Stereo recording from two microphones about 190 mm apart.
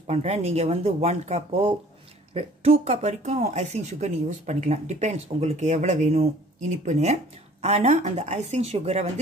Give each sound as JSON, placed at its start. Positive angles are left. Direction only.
{"t": 0.0, "sound": "speech", "side_deg": -35}